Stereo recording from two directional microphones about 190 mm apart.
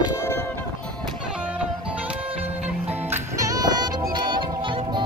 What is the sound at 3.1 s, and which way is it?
Music, 15° right (ahead or behind).